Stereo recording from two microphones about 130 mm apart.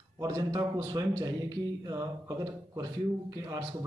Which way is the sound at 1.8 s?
30° right (ahead or behind).